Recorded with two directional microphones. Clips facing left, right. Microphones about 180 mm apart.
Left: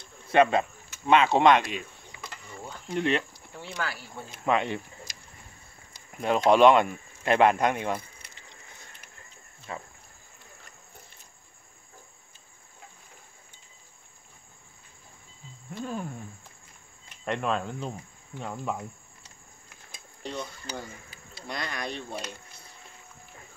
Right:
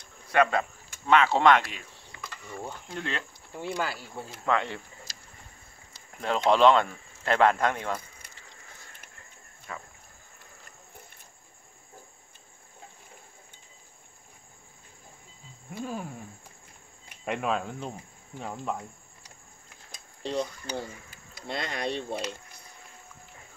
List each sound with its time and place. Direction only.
0.3 s speech: 20° left (ahead or behind)
3.5 s speech: 20° right (ahead or behind)
4.3 s speech: 15° left (ahead or behind)
9.7 s speech: 25° left (ahead or behind)
15.7 s cricket: 5° right (ahead or behind)
17.2 s speech: 5° right (ahead or behind)
20.2 s speech: 30° right (ahead or behind)